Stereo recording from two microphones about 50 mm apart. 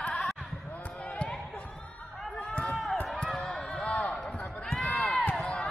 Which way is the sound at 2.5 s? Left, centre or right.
Left.